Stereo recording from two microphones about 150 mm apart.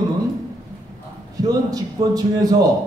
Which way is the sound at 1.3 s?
25° right (ahead or behind).